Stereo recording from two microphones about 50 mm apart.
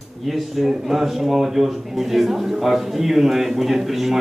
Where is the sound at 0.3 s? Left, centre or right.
Centre.